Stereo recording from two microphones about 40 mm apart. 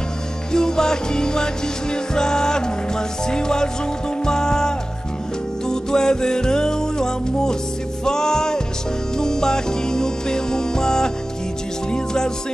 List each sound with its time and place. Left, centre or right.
0.5 s music: centre